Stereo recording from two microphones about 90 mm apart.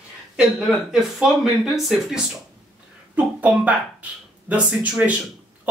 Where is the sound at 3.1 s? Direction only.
15° right (ahead or behind).